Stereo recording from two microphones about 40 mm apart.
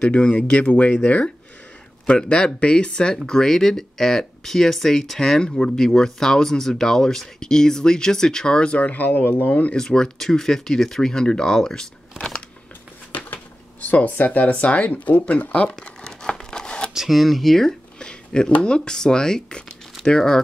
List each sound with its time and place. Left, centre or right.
0.3 s speech: left
2.0 s speech: left
3.3 s speech: centre
8.7 s speech: left
9.5 s speech: left
9.8 s speech: centre
13.1 s speech: left
15.5 s crumpling: left
16.9 s a sound: centre; by 18.5 s left
18.6 s speech: centre